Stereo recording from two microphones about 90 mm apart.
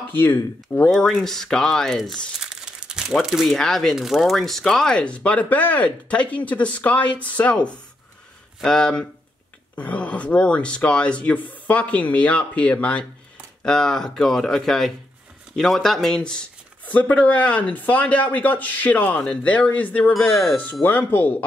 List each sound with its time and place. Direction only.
0.1 s speech: 20° left (ahead or behind)
1.1 s speech: 5° left (ahead or behind); by 21.5 s 20° left (ahead or behind)